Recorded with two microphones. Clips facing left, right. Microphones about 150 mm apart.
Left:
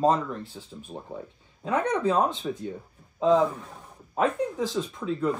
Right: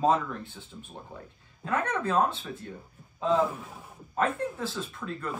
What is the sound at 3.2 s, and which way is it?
Speech, 5° right (ahead or behind).